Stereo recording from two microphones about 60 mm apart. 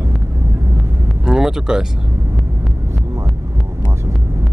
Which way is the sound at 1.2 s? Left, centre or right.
Centre.